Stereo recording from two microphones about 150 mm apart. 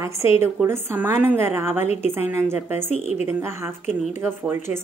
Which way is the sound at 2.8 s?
45° left (ahead or behind).